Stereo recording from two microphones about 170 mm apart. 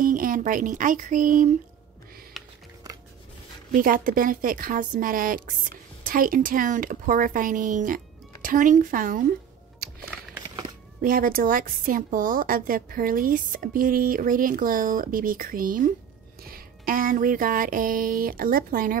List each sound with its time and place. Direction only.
0.0 s speech: 55° right (ahead or behind)
2.4 s a sound: centre (ahead or behind)
3.7 s a woman's voice: 55° right (ahead or behind)
9.8 s music: 65° right (ahead or behind)
11.0 s a woman's voice: 55° right (ahead or behind)